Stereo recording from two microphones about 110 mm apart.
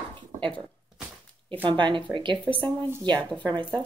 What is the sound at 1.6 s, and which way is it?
Speech, 45° right (ahead or behind).